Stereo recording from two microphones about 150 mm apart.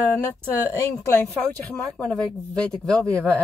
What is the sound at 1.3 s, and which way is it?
Speech, 10° left (ahead or behind).